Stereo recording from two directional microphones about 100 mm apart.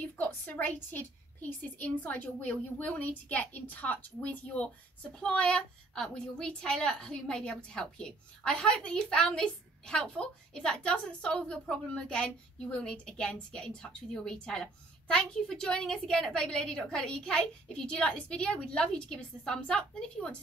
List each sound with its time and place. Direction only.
0.0 s a woman's voice: 15° left (ahead or behind)